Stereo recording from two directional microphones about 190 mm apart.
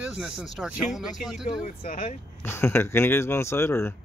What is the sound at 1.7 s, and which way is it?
Speech, 45° left (ahead or behind).